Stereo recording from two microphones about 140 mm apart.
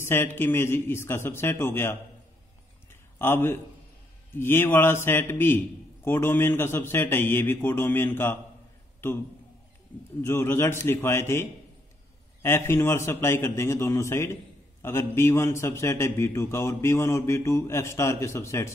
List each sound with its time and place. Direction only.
0.0 s a man's voice: 15° left (ahead or behind)
2.9 s a sound: 15° left (ahead or behind)
4.4 s a man's voice: 15° left (ahead or behind)
10.2 s a man's voice: 15° left (ahead or behind)